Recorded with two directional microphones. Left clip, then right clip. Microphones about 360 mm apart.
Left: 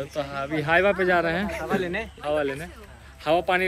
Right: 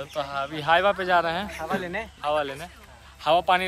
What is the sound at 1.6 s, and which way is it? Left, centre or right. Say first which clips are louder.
Speech: left 2 dB; right.